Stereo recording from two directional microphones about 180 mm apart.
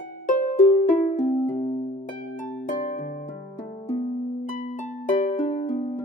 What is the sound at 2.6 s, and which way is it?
Harp, 45° left (ahead or behind).